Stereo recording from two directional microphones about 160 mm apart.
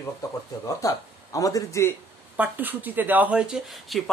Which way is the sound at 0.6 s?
20° left (ahead or behind).